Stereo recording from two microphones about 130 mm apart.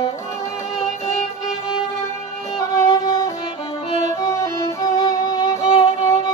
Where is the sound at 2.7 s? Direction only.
25° left (ahead or behind).